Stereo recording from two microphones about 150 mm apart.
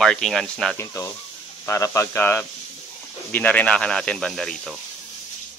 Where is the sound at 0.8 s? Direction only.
20° left (ahead or behind); by 4.7 s centre (ahead or behind).